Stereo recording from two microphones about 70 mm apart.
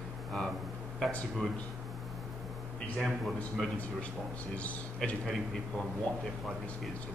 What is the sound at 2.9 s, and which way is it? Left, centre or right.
Speech, centre.